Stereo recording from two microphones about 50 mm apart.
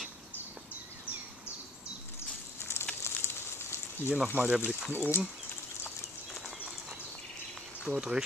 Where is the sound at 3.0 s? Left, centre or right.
Left.